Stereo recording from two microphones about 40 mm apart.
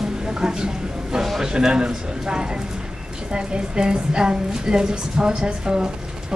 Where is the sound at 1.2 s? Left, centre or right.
Centre.